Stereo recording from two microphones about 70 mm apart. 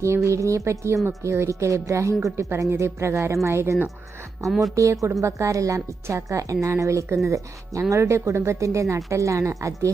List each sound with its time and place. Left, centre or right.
0.0 s speech: right
4.5 s a woman's voice: centre
4.7 s speech: right